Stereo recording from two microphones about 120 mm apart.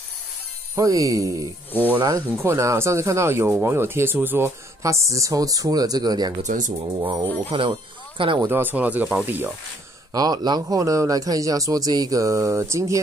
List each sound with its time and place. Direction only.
0.7 s a man's voice: 30° right (ahead or behind)
1.7 s speech: 15° left (ahead or behind)
2.0 s a man's voice: 30° right (ahead or behind)
6.4 s speech: 90° right
7.4 s speech: 50° right (ahead or behind)
8.5 s speech: 15° right (ahead or behind)
10.1 s a man's voice: 30° right (ahead or behind)